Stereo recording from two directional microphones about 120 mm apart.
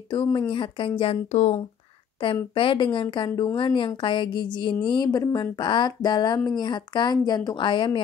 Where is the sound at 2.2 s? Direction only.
45° left (ahead or behind).